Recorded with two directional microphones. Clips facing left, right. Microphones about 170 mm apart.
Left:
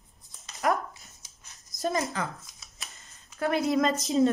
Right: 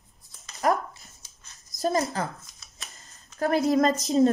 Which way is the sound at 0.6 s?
35° right (ahead or behind).